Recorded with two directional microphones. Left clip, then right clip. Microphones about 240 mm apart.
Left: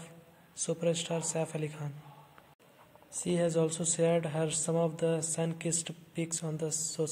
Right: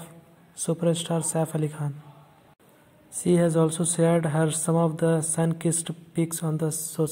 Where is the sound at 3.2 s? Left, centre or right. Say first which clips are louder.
Right 8 dB; centre.